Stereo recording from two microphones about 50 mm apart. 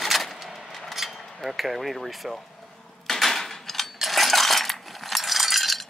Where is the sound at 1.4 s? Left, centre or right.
Centre.